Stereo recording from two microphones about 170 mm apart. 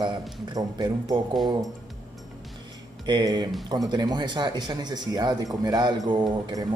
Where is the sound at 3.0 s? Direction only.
25° right (ahead or behind).